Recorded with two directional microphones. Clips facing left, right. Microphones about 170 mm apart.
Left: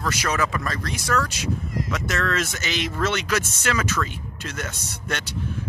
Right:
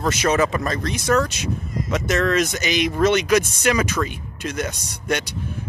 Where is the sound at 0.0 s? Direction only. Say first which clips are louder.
Right 6 dB; 20° right (ahead or behind).